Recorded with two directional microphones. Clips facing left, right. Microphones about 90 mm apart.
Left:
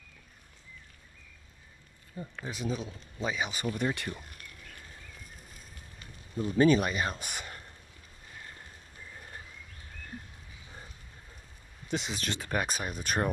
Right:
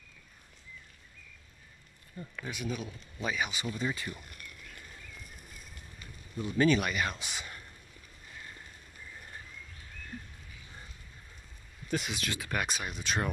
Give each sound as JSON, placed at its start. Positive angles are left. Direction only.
{"t": 2.1, "sound": "speech", "side_deg": 25}
{"t": 3.5, "sound": "speech", "side_deg": 55}
{"t": 6.3, "sound": "speech", "side_deg": 35}
{"t": 7.2, "sound": "speech", "side_deg": 50}
{"t": 11.9, "sound": "speech", "side_deg": 25}